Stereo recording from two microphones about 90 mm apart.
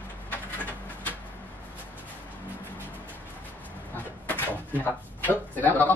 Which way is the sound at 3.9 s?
20° left (ahead or behind).